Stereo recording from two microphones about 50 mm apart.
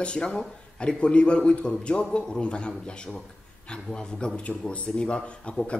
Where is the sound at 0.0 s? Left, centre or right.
Left.